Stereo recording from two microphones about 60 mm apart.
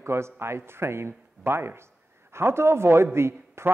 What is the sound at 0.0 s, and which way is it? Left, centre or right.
A man's voice, right.